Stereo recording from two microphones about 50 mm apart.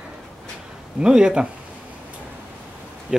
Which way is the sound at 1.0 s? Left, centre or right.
Centre.